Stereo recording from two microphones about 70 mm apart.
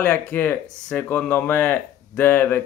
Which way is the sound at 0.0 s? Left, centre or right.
Left.